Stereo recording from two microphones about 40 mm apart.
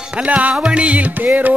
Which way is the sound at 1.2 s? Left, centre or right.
Right.